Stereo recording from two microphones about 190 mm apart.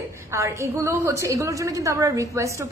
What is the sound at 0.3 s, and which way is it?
A woman's voice, 15° right (ahead or behind).